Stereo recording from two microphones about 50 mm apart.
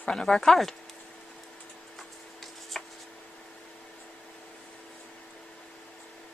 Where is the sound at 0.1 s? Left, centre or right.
Centre.